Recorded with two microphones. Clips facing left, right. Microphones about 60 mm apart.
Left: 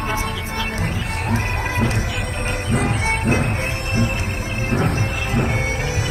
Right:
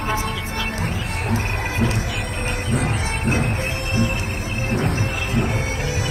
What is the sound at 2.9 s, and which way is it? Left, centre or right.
Music, left.